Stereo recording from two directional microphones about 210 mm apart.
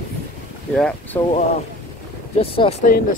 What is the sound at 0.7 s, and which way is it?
Speech, 5° left (ahead or behind).